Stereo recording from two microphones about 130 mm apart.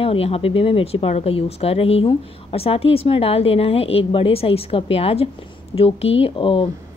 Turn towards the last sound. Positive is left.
turn(degrees=40)  # may be behind; listen again after turning